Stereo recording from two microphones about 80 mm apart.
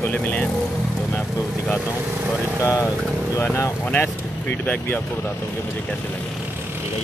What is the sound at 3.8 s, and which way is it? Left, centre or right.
Speech, left.